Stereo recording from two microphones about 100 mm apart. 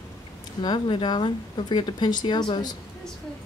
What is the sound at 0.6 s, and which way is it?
Speech, 50° left (ahead or behind).